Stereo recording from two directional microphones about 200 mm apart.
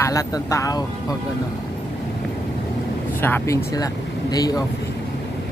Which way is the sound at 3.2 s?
10° left (ahead or behind).